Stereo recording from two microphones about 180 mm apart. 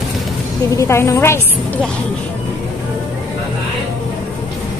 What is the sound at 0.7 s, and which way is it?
Speech, 15° left (ahead or behind).